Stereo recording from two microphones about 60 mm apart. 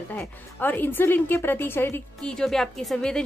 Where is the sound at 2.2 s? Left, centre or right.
Centre.